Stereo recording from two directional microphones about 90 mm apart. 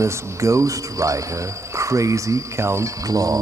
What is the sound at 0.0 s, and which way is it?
Speech, 35° right (ahead or behind).